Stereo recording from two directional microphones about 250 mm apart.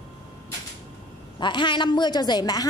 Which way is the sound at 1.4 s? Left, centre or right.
Centre.